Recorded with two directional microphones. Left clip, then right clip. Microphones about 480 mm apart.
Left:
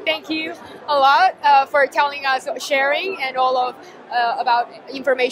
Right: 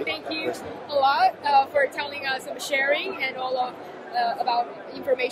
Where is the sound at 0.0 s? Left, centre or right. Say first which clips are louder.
Left 6 dB; left.